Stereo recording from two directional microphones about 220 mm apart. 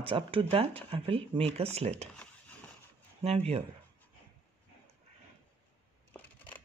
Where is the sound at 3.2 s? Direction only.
25° right (ahead or behind).